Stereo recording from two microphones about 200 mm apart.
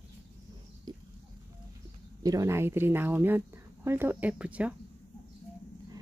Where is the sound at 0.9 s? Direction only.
20° right (ahead or behind).